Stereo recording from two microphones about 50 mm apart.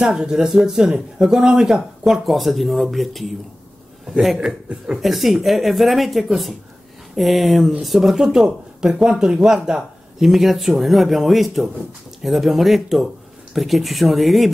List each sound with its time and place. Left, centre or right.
0.0 s speech: centre
4.4 s a man's voice: right
5.0 s speech: centre